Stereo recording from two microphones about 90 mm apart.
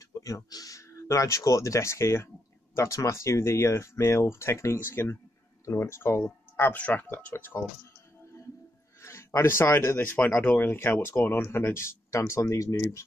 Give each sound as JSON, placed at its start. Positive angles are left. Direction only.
{"t": 0.2, "sound": "speech", "side_deg": 45}
{"t": 9.0, "sound": "speech", "side_deg": 30}